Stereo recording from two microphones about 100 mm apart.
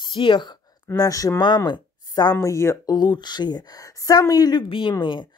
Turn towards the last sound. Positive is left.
turn(degrees=55)  # may be behind; listen again after turning